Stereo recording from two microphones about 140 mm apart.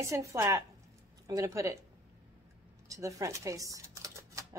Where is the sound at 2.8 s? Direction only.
25° right (ahead or behind).